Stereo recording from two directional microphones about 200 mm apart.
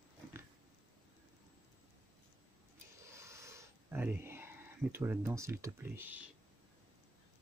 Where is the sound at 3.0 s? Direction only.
15° right (ahead or behind).